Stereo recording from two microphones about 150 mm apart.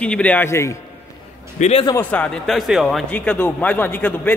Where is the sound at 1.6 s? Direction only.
45° left (ahead or behind).